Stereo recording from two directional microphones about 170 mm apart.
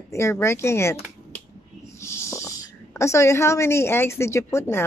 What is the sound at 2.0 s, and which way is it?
Speech, 15° left (ahead or behind).